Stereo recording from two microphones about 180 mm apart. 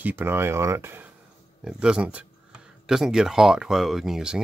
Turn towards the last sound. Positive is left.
turn(degrees=-5)  # may be behind; listen again after turning